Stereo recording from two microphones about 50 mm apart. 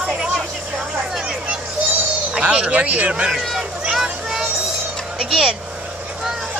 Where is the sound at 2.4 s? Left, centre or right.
Right.